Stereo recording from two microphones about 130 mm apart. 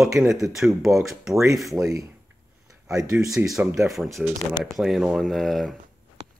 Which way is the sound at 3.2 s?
5° right (ahead or behind).